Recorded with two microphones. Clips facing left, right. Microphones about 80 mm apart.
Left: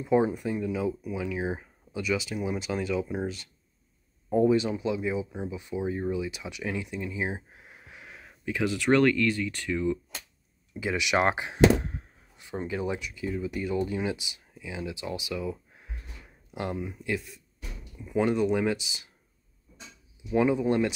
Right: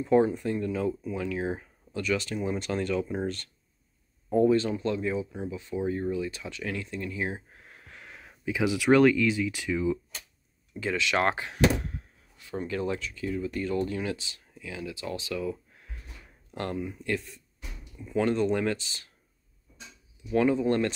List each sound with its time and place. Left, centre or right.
0.0 s speech: centre
10.8 s speech: centre
20.2 s speech: centre